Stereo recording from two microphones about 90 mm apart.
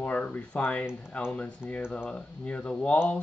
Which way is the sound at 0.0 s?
20° left (ahead or behind).